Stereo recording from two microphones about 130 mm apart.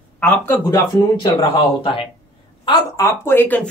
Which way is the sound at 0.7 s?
35° left (ahead or behind).